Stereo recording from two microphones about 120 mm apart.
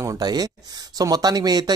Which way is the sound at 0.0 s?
35° right (ahead or behind).